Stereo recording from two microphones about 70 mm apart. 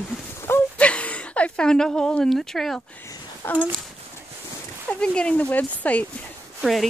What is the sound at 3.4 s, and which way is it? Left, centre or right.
Speech, left.